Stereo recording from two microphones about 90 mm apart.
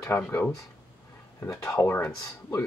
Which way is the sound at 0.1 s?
30° left (ahead or behind).